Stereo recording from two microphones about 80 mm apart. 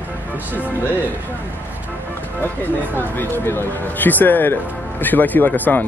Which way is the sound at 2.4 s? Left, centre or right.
Left.